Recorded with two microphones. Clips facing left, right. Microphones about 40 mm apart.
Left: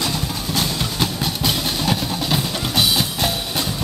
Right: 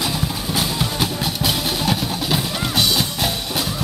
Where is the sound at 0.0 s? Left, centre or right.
Centre.